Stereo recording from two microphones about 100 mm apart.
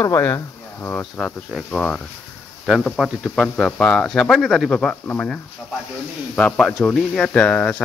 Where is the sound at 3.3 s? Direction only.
5° left (ahead or behind).